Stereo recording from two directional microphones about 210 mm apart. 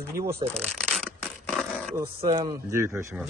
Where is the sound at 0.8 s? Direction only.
5° left (ahead or behind).